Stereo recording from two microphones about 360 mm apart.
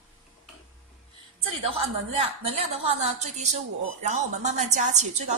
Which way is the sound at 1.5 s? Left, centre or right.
Centre.